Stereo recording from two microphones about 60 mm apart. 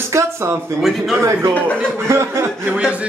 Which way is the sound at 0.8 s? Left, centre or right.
Centre.